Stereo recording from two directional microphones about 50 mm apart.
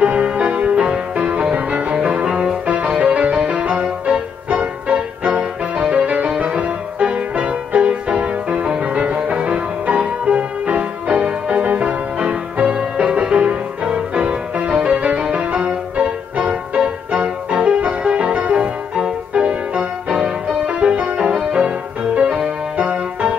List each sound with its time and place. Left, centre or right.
0.0 s music: right